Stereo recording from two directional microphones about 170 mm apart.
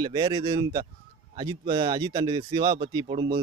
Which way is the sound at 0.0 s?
30° right (ahead or behind).